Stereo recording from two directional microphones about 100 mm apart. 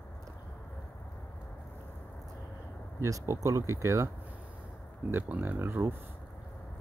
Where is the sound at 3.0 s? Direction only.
30° right (ahead or behind).